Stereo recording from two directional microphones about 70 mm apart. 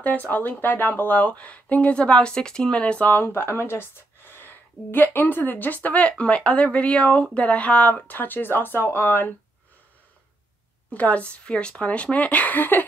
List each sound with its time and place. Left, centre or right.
0.0 s speech: left
10.9 s speech: centre